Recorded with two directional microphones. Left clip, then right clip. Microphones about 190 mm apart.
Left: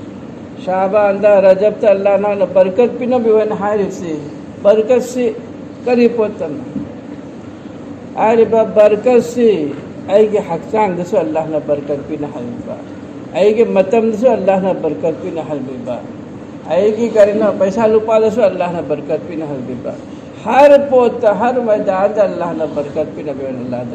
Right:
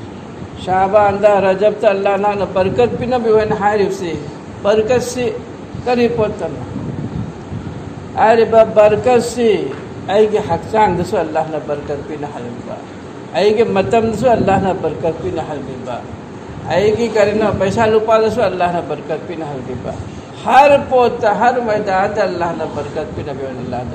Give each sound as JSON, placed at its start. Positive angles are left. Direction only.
{"t": 0.7, "sound": "a man's voice", "side_deg": -25}
{"t": 8.2, "sound": "a man's voice", "side_deg": -35}
{"t": 13.3, "sound": "a man's voice", "side_deg": -30}
{"t": 16.6, "sound": "a man's voice", "side_deg": -35}
{"t": 20.4, "sound": "a man's voice", "side_deg": -30}